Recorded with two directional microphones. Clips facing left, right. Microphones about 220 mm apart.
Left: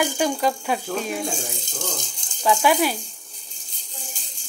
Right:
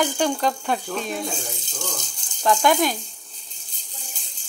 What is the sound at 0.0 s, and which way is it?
Speech, 10° left (ahead or behind).